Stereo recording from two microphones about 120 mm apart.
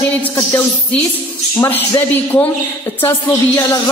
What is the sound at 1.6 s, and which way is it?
Speech, 15° left (ahead or behind).